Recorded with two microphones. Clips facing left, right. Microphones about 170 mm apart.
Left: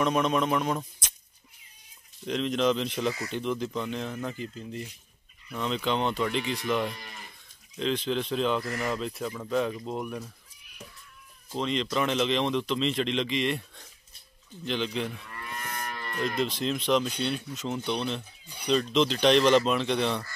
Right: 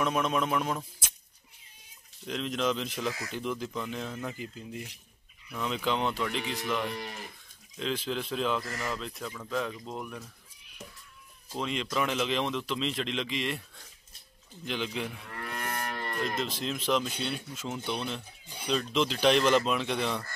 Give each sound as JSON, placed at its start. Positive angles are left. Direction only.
{"t": 0.0, "sound": "speech", "side_deg": -5}
{"t": 2.2, "sound": "speech", "side_deg": 0}
{"t": 9.9, "sound": "speech", "side_deg": 15}
{"t": 11.5, "sound": "speech", "side_deg": -5}
{"t": 14.7, "sound": "speech", "side_deg": -5}
{"t": 15.2, "sound": "moo", "side_deg": -60}
{"t": 16.3, "sound": "speech", "side_deg": -5}